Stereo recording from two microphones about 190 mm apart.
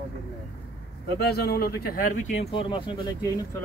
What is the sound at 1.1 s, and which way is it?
Speech, 55° left (ahead or behind).